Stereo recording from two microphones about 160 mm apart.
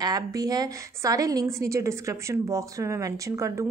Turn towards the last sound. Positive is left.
turn(degrees=-20)  # may be behind; listen again after turning